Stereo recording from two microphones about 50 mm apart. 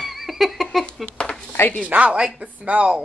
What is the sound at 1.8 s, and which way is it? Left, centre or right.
A woman's voice, right.